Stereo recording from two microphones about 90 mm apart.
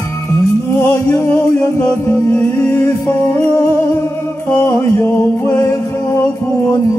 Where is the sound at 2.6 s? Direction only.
15° left (ahead or behind).